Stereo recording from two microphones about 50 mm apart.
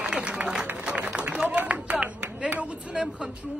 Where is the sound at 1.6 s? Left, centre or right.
Right.